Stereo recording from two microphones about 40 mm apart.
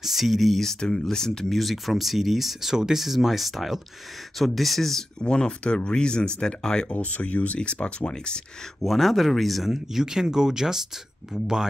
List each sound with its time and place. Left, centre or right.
0.0 s speech: centre
0.7 s speech: centre
1.6 s speech: centre
5.2 s speech: left
6.9 s speech: left
8.8 s speech: centre
9.7 s speech: centre